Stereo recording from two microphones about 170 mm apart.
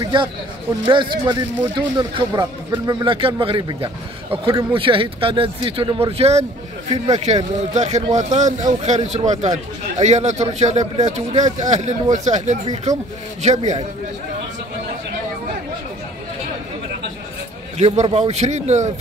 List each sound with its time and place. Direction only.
0.0 s a man's voice: 30° right (ahead or behind)
17.7 s speech: 40° right (ahead or behind)